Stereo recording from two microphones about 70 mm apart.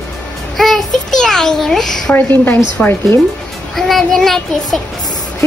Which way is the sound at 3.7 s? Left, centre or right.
Centre.